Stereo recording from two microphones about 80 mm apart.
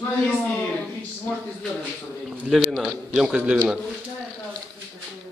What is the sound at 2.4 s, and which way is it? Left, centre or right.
Speech, centre.